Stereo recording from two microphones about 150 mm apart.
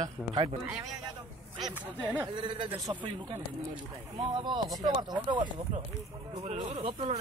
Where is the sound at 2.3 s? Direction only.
35° right (ahead or behind).